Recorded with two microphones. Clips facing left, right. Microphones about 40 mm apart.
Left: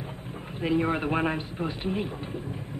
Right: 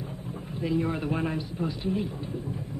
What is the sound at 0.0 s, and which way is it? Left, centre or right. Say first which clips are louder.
A man's voice: right 1 dB; left.